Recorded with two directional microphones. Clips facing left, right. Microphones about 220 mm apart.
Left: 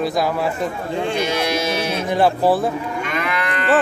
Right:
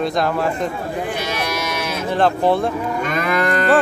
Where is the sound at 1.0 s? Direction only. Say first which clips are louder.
Left 5 dB; 25° left (ahead or behind).